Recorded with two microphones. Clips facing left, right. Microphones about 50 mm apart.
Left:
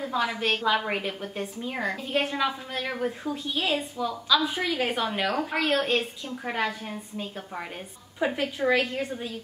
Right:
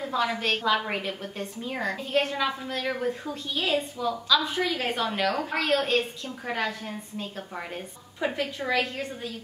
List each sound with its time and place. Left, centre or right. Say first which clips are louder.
0.0 s a woman's voice: even; centre